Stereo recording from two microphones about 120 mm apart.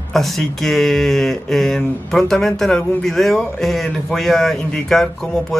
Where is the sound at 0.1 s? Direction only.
Centre (ahead or behind).